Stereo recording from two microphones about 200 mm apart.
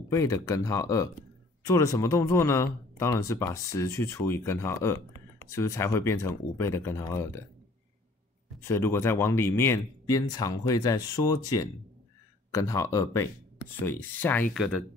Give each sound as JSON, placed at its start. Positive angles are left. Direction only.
{"t": 0.1, "sound": "speech", "side_deg": 15}
{"t": 8.5, "sound": "speech", "side_deg": 15}